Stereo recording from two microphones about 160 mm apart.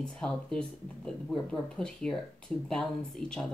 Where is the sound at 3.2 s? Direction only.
5° left (ahead or behind).